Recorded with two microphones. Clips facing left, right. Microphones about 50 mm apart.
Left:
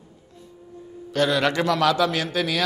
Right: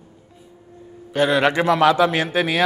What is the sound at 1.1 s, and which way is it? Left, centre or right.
A man's voice, right.